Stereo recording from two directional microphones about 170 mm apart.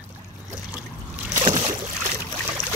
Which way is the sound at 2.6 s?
90° right.